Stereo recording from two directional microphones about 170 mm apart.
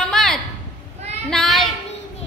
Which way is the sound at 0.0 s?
5° left (ahead or behind).